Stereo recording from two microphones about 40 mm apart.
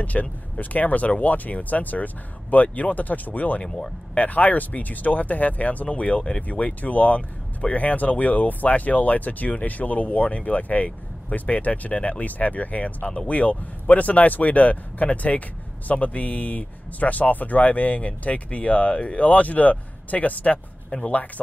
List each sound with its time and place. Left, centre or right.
0.0 s speech: left
3.6 s speech: centre
4.1 s speech: left